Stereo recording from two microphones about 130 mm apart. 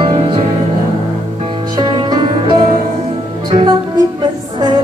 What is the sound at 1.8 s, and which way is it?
Music, 35° right (ahead or behind).